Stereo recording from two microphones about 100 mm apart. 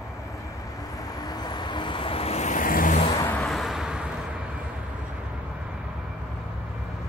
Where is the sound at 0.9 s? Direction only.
40° left (ahead or behind); by 2.4 s 80° left.